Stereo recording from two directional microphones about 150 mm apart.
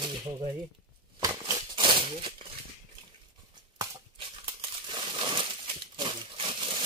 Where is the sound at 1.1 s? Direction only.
25° right (ahead or behind).